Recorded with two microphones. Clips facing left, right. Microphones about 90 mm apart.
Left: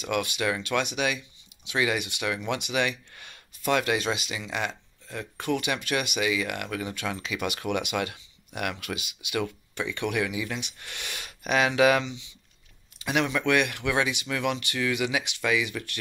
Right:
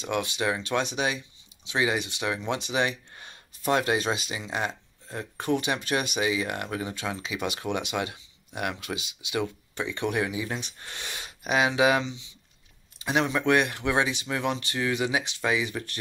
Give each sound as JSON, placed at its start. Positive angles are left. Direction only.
{"t": 0.0, "sound": "speech", "side_deg": -25}